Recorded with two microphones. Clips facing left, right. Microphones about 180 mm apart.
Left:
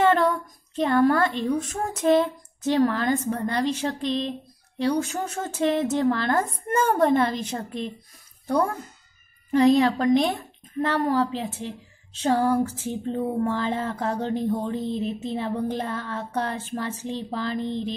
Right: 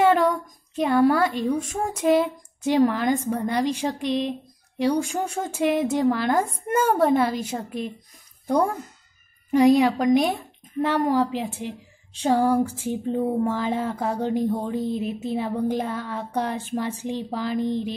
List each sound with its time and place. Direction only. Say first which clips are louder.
0.0 s speech: right 1 dB; 10° right (ahead or behind)